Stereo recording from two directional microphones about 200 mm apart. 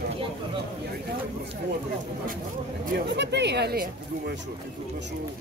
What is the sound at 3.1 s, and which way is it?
Speech, 60° right (ahead or behind).